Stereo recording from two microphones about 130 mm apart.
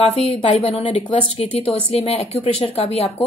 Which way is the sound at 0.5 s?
55° left (ahead or behind).